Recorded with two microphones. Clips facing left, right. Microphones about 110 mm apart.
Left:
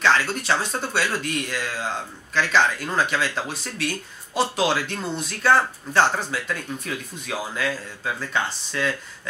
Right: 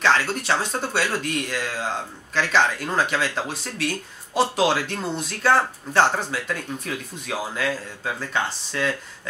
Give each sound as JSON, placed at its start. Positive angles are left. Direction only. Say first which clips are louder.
{"t": 0.0, "sound": "speech", "louder": "even", "side_deg": -45}
{"t": 3.7, "sound": "speech", "louder": "right 1 dB", "side_deg": -60}